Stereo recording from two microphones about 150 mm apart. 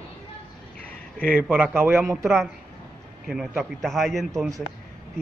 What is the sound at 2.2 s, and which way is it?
A man's voice, centre (ahead or behind).